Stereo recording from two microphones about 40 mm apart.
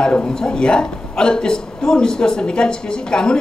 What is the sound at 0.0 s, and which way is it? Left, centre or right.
A woman's voice, left.